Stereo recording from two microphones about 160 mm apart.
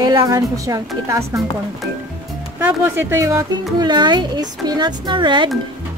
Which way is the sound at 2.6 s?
10° right (ahead or behind).